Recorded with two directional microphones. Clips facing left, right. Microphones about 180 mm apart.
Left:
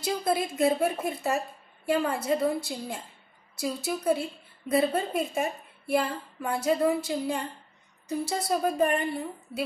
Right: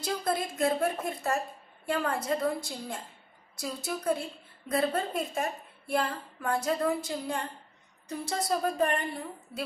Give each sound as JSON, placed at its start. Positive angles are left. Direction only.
{"t": 0.0, "sound": "a woman's voice", "side_deg": 5}